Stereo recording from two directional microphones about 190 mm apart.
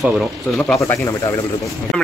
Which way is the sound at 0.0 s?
Centre (ahead or behind).